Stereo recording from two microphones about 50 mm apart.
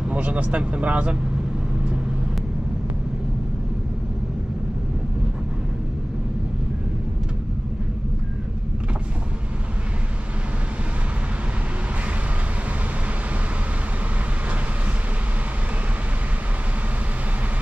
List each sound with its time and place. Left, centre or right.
0.1 s speech: right